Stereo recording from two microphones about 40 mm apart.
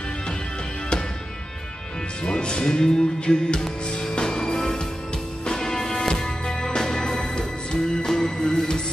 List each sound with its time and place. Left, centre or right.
2.2 s music: left